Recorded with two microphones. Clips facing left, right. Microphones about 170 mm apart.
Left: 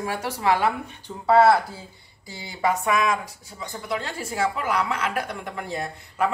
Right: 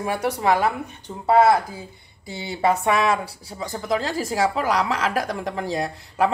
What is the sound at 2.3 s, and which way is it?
Speech, 25° right (ahead or behind).